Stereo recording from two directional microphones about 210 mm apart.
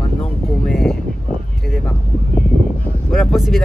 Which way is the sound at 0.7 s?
Centre (ahead or behind).